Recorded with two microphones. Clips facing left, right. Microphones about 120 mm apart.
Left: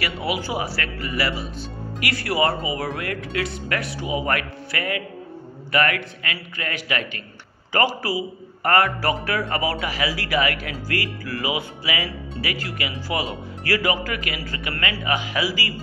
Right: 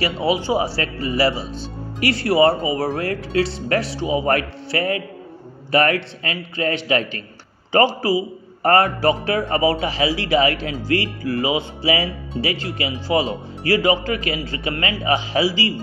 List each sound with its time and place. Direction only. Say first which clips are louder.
0.0 s a man's voice: right 6 dB; 25° right (ahead or behind)